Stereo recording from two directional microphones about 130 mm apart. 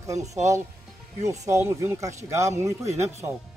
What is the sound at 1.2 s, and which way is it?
A man's voice, 25° right (ahead or behind).